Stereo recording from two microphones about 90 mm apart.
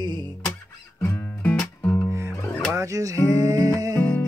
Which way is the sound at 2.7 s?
35° right (ahead or behind).